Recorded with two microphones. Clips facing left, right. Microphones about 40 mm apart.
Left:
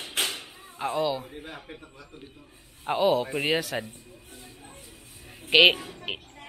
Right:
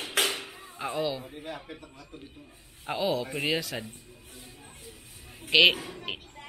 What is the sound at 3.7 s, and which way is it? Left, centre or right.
Speech, centre.